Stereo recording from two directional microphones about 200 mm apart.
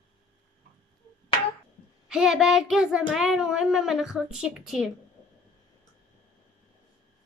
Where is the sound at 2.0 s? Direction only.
5° right (ahead or behind).